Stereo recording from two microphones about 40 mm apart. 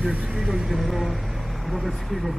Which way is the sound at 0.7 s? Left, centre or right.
Centre.